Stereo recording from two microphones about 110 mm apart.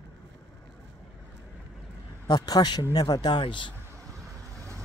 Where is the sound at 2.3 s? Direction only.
35° left (ahead or behind).